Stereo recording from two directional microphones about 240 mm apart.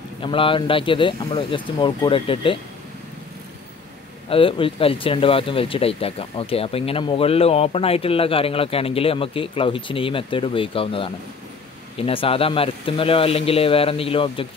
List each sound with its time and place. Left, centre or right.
0.2 s speech: left
4.3 s speech: left